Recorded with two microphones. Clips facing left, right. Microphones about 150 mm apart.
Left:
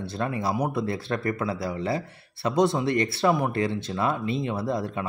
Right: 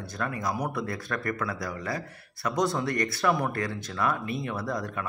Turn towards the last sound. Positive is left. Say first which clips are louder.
# left 4 dB
turn(degrees=25)  # may be behind; listen again after turning